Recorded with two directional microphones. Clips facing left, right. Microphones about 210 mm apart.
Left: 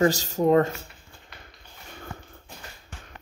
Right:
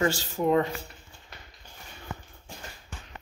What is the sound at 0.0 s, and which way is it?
Speech, 40° left (ahead or behind).